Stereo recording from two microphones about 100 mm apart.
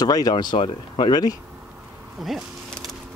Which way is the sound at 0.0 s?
40° left (ahead or behind).